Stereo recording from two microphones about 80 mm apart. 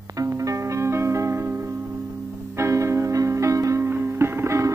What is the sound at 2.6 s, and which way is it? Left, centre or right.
Music, right.